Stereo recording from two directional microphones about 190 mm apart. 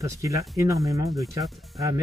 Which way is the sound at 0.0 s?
15° right (ahead or behind).